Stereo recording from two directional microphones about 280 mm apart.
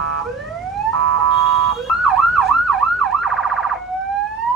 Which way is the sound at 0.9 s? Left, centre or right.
Centre.